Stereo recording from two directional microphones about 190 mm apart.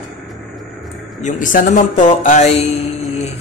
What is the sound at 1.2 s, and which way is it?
Speech, 45° left (ahead or behind).